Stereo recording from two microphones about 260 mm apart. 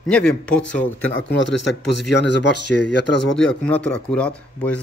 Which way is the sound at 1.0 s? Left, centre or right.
Left.